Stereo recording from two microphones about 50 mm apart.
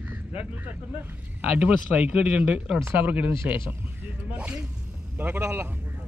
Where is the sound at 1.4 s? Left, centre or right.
Right.